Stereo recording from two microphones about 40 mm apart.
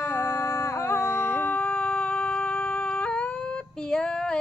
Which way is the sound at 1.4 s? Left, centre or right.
Left.